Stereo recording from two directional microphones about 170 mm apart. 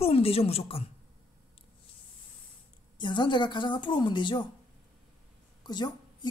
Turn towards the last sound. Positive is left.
turn(degrees=25)  # may be behind; listen again after turning